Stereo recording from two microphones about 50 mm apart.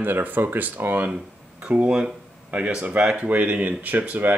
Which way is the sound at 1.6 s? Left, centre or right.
Right.